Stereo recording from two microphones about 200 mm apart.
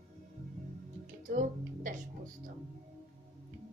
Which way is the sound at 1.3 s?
40° right (ahead or behind).